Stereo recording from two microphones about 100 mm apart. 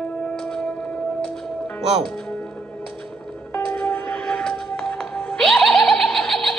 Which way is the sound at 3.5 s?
15° left (ahead or behind).